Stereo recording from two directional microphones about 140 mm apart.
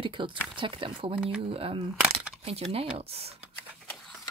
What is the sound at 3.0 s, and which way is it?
Speech, 45° right (ahead or behind).